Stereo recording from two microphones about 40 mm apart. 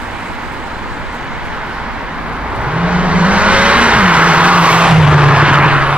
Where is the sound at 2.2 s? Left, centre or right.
Right.